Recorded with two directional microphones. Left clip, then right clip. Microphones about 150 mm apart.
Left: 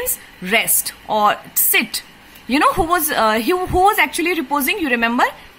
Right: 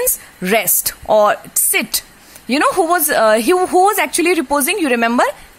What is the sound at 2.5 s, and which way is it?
A woman's voice, 35° right (ahead or behind).